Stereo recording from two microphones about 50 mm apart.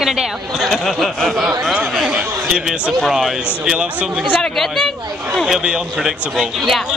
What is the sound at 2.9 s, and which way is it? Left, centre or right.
Speech, centre.